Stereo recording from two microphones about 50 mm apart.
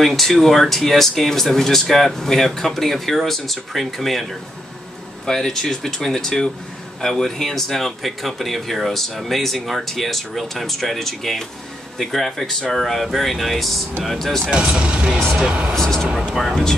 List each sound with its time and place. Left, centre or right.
0.0 s speech: centre
14.5 s speech: centre
15.7 s speech: centre